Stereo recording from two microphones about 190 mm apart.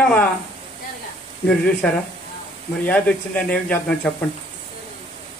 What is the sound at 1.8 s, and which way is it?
Speech, 5° left (ahead or behind).